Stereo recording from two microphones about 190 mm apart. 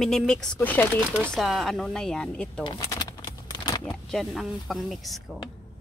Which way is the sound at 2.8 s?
20° left (ahead or behind).